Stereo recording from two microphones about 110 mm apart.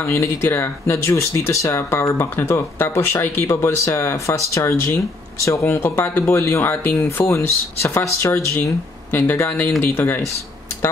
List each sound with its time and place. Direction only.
0.0 s speech: 25° left (ahead or behind)